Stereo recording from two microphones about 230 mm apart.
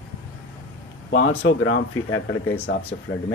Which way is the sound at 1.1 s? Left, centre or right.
Left.